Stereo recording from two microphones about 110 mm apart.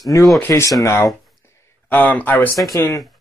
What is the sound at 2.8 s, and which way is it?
Speech, 30° left (ahead or behind).